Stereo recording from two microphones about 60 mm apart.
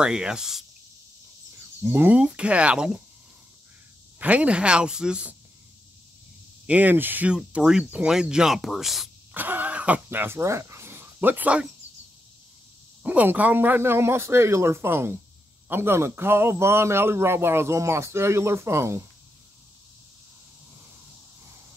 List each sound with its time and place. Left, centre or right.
0.0 s speech: centre
1.8 s speech: right
2.1 s speech: centre
4.2 s speech: right
6.6 s speech: right
7.2 s speech: centre
9.3 s vehicle: right
10.0 s speech: right
13.0 s a man's voice: right